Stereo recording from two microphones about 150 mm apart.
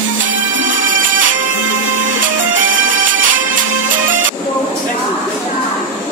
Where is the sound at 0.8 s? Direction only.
65° right (ahead or behind).